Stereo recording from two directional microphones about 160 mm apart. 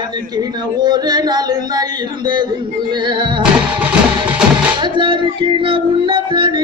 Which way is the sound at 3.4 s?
10° right (ahead or behind).